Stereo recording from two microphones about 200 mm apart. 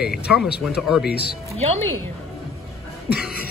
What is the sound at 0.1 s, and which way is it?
Speech, centre (ahead or behind).